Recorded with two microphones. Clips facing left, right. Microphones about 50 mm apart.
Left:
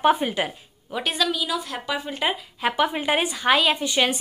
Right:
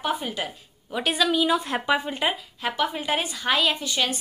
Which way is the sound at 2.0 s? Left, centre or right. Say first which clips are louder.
Even; centre.